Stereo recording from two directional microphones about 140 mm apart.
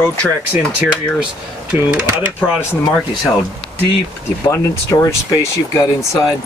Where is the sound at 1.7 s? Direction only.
10° right (ahead or behind).